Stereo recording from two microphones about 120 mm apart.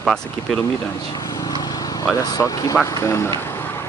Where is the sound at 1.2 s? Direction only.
30° left (ahead or behind).